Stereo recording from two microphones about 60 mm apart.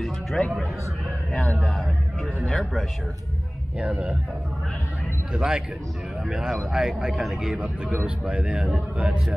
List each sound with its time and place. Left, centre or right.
0.0 s a man's voice: centre
5.3 s speech: centre
7.6 s speech: right